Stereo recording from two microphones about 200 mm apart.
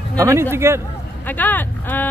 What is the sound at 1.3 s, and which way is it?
Speech, 10° left (ahead or behind).